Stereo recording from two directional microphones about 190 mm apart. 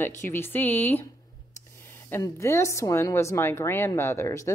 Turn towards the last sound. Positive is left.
turn(degrees=15)  # may be behind; listen again after turning